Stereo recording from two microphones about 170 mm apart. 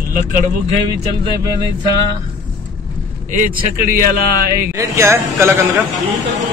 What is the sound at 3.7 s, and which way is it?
Speech, 55° right (ahead or behind).